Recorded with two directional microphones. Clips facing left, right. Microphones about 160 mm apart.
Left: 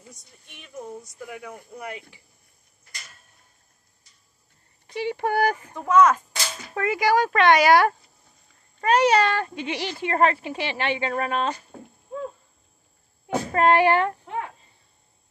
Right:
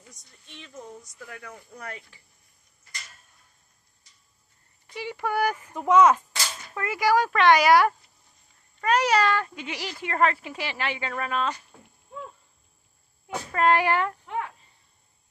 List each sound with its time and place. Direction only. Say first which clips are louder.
0.1 s speech: even; 10° left (ahead or behind)
4.9 s speech: left 4 dB; 30° left (ahead or behind)
5.8 s speech: even; 15° right (ahead or behind)
6.7 s speech: left 2 dB; 30° left (ahead or behind)
13.3 s speech: left 3 dB; 30° left (ahead or behind)